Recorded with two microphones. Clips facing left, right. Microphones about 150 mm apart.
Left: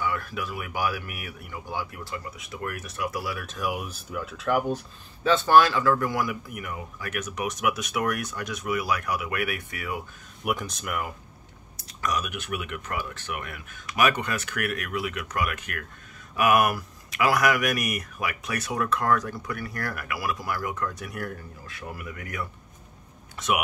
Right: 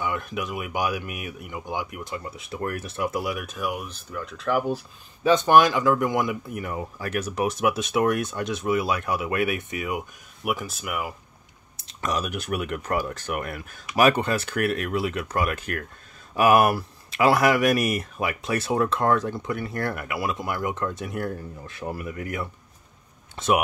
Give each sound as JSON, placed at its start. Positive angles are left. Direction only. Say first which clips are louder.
{"t": 0.0, "sound": "speech", "louder": "right 1 dB", "side_deg": -20}
{"t": 3.5, "sound": "speech", "louder": "right 1 dB", "side_deg": 0}
{"t": 5.2, "sound": "speech", "louder": "right 2 dB", "side_deg": -15}
{"t": 10.4, "sound": "speech", "louder": "right 1 dB", "side_deg": 0}
{"t": 11.7, "sound": "speech", "louder": "right 1 dB", "side_deg": -25}